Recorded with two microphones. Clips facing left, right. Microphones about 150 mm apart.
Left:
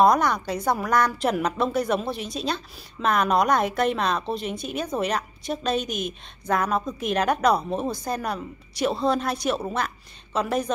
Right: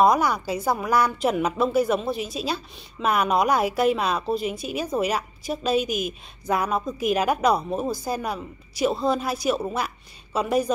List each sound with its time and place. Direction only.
0.0 s a woman's voice: 5° right (ahead or behind)